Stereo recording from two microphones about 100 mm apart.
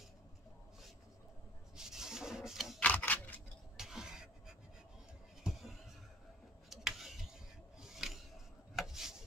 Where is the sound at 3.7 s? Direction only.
5° right (ahead or behind).